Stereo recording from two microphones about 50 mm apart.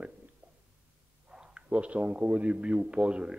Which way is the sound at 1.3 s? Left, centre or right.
Centre.